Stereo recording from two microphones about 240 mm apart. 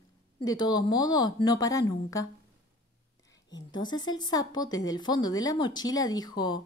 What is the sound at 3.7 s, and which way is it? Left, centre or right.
A woman's voice, centre.